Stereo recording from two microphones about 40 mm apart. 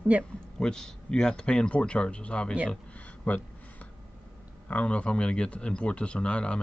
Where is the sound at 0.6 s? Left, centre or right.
Centre.